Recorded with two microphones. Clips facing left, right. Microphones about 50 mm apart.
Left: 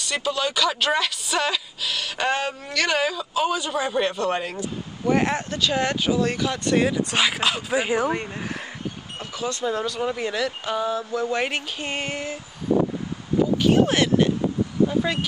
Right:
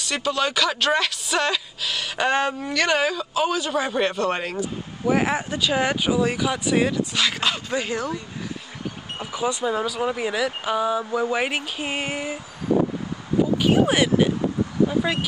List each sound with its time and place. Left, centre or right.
0.0 s speech: centre
7.8 s speech: centre
9.2 s speech: centre
13.6 s speech: centre